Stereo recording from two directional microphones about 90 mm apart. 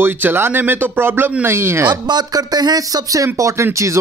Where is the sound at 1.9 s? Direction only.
50° right (ahead or behind).